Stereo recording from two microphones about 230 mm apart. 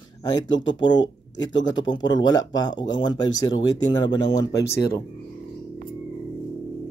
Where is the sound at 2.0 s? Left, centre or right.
Centre.